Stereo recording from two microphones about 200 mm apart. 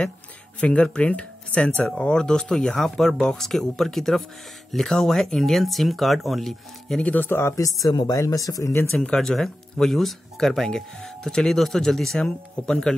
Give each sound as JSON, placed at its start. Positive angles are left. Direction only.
{"t": 0.6, "sound": "speech", "side_deg": 5}
{"t": 8.9, "sound": "speech", "side_deg": 5}